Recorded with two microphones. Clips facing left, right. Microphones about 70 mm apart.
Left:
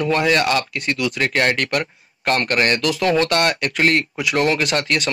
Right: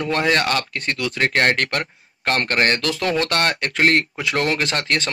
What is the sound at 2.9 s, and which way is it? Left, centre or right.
Speech, left.